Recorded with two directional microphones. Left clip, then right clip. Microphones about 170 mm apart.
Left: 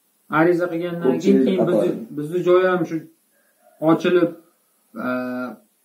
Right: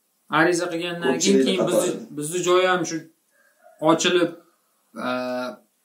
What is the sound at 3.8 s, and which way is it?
Speech, 35° right (ahead or behind).